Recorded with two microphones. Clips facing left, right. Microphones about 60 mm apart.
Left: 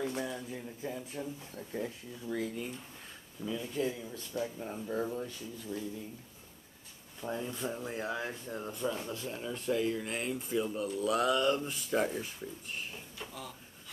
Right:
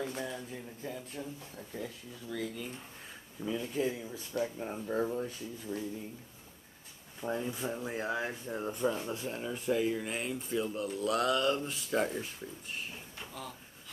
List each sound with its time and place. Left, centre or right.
0.0 s speech: centre
1.7 s speech: left
3.3 s speech: centre
4.4 s speech: right
4.7 s speech: centre
7.2 s speech: centre